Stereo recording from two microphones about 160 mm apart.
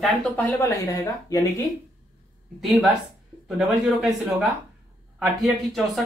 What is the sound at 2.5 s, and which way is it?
Speech, centre (ahead or behind).